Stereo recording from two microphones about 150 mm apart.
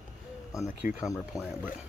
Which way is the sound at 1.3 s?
20° left (ahead or behind).